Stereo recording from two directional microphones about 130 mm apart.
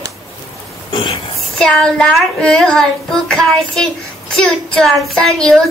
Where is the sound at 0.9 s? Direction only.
40° left (ahead or behind).